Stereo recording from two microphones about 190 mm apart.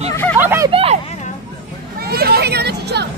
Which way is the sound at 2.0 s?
55° right (ahead or behind).